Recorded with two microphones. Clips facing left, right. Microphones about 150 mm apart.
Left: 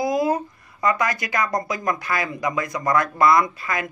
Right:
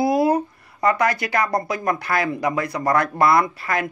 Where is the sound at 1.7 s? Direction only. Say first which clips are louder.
Right 2 dB; 60° right (ahead or behind).